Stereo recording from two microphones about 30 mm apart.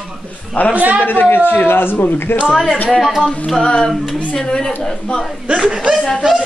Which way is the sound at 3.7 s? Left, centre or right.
Left.